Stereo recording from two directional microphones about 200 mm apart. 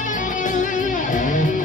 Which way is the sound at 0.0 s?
40° left (ahead or behind).